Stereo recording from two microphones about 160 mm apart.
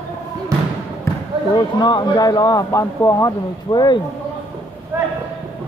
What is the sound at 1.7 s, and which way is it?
Speech, 25° left (ahead or behind).